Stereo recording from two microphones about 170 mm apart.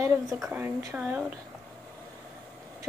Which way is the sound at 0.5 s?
10° right (ahead or behind).